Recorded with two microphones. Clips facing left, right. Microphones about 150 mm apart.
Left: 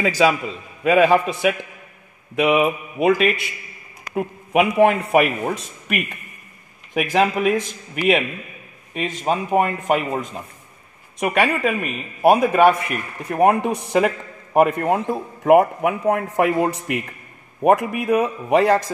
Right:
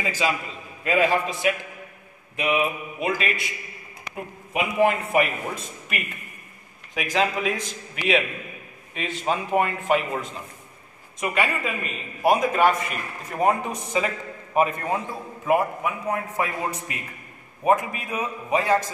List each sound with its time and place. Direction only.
0.0 s a man's voice: 75° left (ahead or behind)
0.8 s a man's voice: 60° left (ahead or behind)
2.3 s a man's voice: 75° left (ahead or behind)
6.9 s a man's voice: 55° left (ahead or behind)
11.1 s a man's voice: 70° left (ahead or behind)
12.2 s a man's voice: 60° left (ahead or behind)